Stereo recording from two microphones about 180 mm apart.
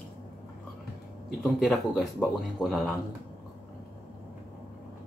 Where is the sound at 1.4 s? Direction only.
Centre (ahead or behind).